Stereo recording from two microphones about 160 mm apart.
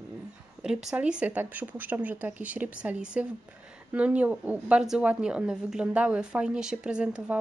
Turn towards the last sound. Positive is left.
turn(degrees=-5)  # may be behind; listen again after turning